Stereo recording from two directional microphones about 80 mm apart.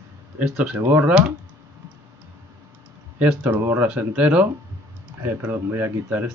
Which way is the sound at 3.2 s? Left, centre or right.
Centre.